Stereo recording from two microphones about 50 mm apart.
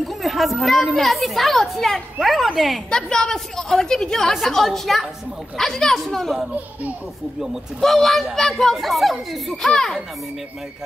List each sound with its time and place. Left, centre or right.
0.0 s a woman's voice: centre
2.9 s a woman's voice: centre
7.8 s a woman's voice: centre
9.6 s a woman's voice: centre